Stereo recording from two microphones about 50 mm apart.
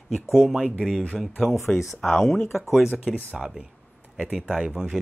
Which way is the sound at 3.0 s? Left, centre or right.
Centre.